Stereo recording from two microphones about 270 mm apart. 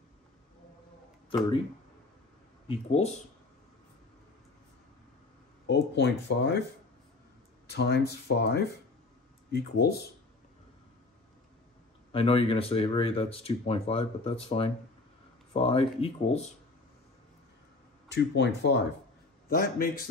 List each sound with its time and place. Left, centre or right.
2.7 s speech: left
5.7 s speech: left
7.6 s speech: left
12.1 s speech: left
18.0 s speech: left